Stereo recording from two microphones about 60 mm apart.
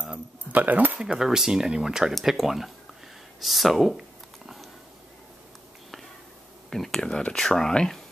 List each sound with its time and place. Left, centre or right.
0.5 s speech: right
0.9 s speech: centre
6.7 s speech: centre